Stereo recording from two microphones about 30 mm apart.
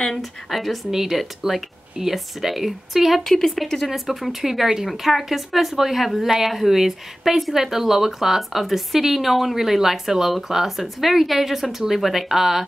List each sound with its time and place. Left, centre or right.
0.2 s a woman's voice: centre
3.3 s a woman's voice: centre